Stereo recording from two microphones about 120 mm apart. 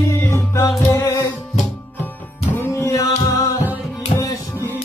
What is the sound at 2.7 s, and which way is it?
Music, 25° left (ahead or behind).